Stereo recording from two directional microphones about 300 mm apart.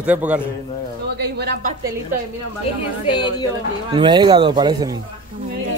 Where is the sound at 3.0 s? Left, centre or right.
Centre.